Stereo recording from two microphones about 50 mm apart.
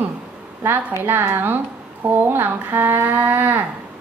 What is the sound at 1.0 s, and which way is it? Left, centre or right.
A woman's voice, right.